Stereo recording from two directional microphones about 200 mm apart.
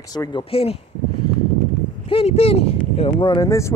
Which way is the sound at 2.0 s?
30° left (ahead or behind).